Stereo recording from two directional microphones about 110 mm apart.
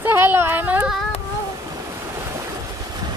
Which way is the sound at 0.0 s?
20° right (ahead or behind).